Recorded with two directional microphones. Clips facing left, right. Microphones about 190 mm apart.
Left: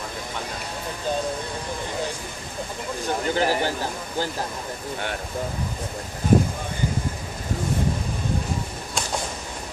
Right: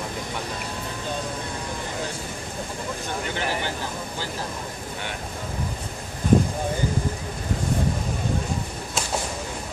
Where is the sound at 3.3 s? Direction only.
40° left (ahead or behind).